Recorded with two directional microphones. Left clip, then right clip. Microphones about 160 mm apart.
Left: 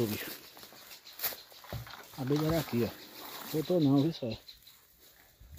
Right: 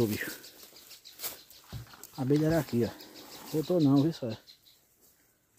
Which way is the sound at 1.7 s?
45° left (ahead or behind).